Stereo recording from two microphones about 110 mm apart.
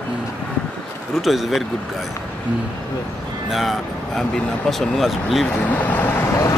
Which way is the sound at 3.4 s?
Centre (ahead or behind).